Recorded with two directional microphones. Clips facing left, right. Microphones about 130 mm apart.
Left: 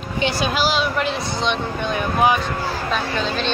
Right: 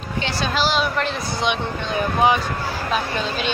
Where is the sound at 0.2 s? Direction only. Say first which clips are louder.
Left 2 dB; 10° left (ahead or behind).